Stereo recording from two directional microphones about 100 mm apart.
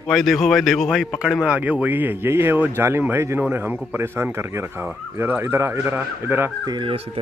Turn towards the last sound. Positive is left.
turn(degrees=-45)  # may be behind; listen again after turning